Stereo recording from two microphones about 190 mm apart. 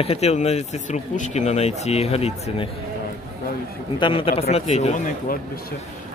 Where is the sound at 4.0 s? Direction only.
30° left (ahead or behind).